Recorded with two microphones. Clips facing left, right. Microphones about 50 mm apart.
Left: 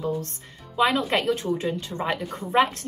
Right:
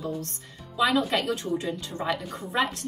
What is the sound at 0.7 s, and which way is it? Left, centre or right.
A woman's voice, left.